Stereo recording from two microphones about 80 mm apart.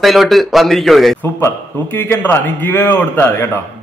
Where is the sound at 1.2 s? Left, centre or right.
Left.